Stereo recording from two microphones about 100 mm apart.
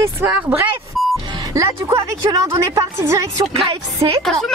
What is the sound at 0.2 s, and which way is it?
Speech, 20° right (ahead or behind).